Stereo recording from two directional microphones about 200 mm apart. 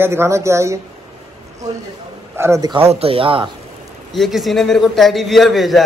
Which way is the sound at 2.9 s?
30° right (ahead or behind).